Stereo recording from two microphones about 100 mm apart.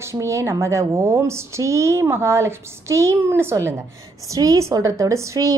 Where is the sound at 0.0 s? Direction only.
30° right (ahead or behind).